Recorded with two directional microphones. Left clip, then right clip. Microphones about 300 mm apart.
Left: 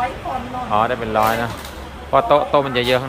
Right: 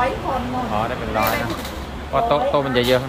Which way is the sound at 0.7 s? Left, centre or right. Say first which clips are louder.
Left 8 dB; centre.